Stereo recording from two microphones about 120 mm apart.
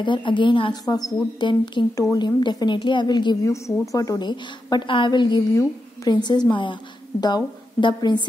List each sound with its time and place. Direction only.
0.0 s a woman's voice: 40° left (ahead or behind)
3.4 s a woman's voice: 25° left (ahead or behind)